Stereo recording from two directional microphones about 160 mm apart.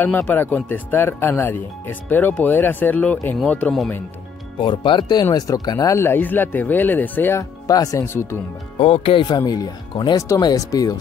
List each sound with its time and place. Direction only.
0.0 s speech: 10° left (ahead or behind)
4.6 s speech: 30° left (ahead or behind)
8.7 s speech: 35° left (ahead or behind)